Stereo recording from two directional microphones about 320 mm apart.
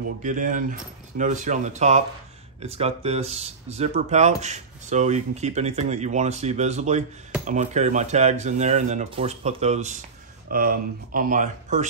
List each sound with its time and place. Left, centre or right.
0.2 s speech: right